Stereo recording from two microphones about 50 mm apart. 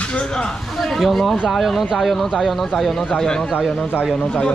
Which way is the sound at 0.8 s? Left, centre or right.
Centre.